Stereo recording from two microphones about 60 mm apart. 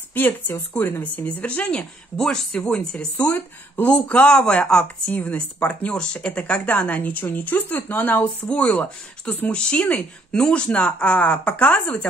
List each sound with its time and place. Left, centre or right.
0.1 s speech: left
1.2 s speech: left
2.1 s speech: centre
5.1 s speech: left